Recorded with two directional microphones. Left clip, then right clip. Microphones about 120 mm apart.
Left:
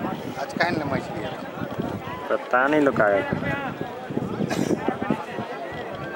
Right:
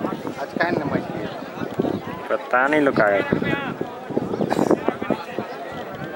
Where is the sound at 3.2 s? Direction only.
40° right (ahead or behind).